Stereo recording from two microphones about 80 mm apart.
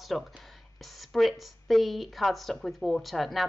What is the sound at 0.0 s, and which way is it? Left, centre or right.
A woman's voice, centre.